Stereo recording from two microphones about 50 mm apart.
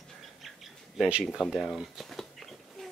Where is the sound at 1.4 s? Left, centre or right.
Centre.